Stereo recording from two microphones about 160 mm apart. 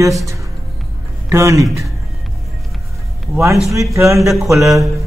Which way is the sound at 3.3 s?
20° right (ahead or behind).